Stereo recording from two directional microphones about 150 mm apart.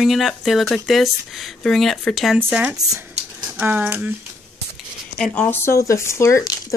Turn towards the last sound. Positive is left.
turn(degrees=20)  # may be behind; listen again after turning